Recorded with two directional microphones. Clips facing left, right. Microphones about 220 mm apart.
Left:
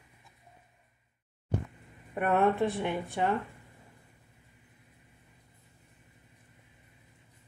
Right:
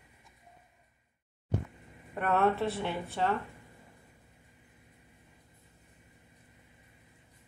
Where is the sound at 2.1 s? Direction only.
15° left (ahead or behind).